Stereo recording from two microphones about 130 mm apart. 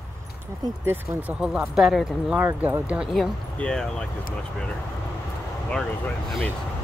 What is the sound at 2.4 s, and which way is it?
Speech, 15° right (ahead or behind).